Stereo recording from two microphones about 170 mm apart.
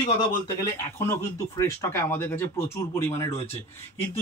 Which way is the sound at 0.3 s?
20° left (ahead or behind).